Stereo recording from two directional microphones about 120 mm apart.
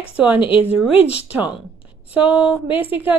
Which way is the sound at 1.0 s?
10° right (ahead or behind).